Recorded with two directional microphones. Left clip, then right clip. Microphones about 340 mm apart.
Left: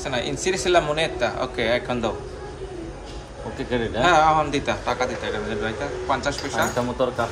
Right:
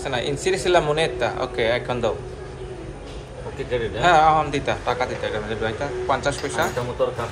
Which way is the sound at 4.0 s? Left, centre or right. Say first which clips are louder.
Right 1 dB; centre.